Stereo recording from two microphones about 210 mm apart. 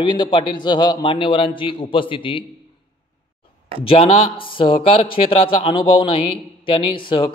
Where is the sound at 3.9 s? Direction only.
25° left (ahead or behind).